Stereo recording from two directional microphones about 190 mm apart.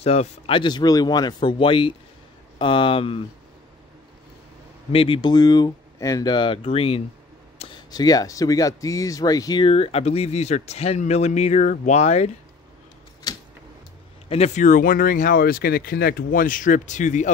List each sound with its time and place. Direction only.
0.0 s speech: 35° left (ahead or behind)
4.9 s speech: 25° left (ahead or behind)
14.3 s speech: 35° left (ahead or behind)